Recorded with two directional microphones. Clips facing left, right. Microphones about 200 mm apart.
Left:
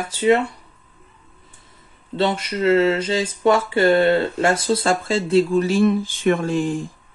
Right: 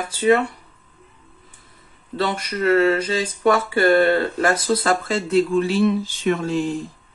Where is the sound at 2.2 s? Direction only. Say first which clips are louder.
Left 2 dB; 25° left (ahead or behind); by 6.7 s 50° left (ahead or behind).